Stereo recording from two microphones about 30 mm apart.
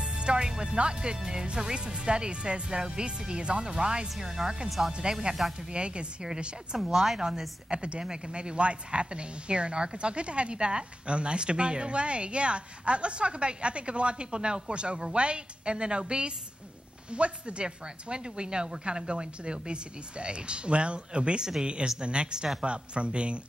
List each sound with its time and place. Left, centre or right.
0.0 s music: right
0.6 s speech: right
4.2 s speech: centre
5.3 s speech: right
6.8 s speech: centre
7.7 s speech: right
21.4 s speech: right
22.0 s speech: right